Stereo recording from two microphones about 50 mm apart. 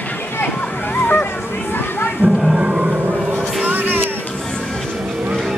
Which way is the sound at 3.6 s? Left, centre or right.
Right.